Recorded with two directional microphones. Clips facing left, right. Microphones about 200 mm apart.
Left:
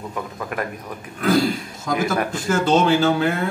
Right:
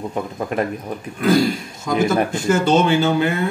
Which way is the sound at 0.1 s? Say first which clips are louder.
Right 5 dB; 30° right (ahead or behind).